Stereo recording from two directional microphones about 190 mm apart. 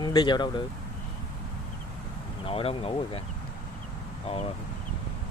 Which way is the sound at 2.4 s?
30° left (ahead or behind).